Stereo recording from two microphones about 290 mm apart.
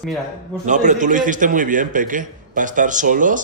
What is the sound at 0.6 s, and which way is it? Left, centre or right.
Speech, right.